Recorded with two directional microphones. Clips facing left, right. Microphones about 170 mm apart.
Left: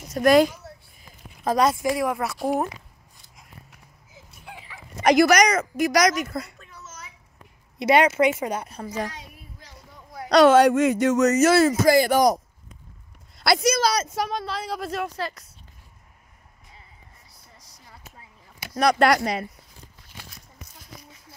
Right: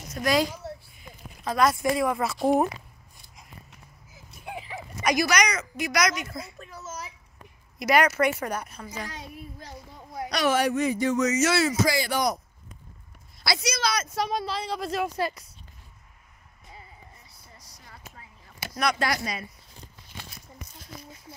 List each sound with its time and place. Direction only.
0.1 s speech: 55° left (ahead or behind)
1.4 s speech: 35° left (ahead or behind)
1.8 s speech: 5° left (ahead or behind)
4.5 s a sound: 25° right (ahead or behind)
5.0 s a woman's voice: 55° left (ahead or behind); by 6.2 s 40° left (ahead or behind)
6.6 s a sound: 40° right (ahead or behind)
7.8 s speech: 25° left (ahead or behind)
8.6 s a child's voice: 40° left (ahead or behind)
10.3 s speech: 75° left (ahead or behind)
11.4 s a woman's voice: 50° left (ahead or behind)
13.4 s a woman's voice: 55° left (ahead or behind)
14.3 s speech: centre (ahead or behind)
15.1 s speech: 10° right (ahead or behind)
18.9 s speech: 65° left (ahead or behind)